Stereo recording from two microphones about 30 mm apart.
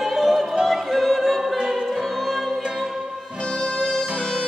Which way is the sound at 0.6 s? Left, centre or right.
Centre.